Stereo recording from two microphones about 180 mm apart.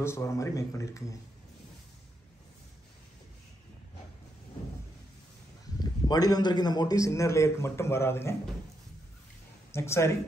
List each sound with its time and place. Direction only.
0.0 s a man's voice: 15° left (ahead or behind)
5.8 s a man's voice: 20° left (ahead or behind)
9.8 s a man's voice: 15° left (ahead or behind)